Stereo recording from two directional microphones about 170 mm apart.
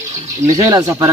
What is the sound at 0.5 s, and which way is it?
Speech, 25° right (ahead or behind).